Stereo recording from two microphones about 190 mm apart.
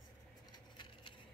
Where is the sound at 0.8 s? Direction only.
25° left (ahead or behind).